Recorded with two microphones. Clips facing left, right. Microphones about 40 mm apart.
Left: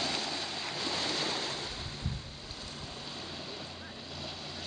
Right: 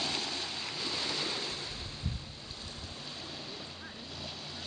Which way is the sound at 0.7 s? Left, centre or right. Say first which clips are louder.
Left 2 dB; left.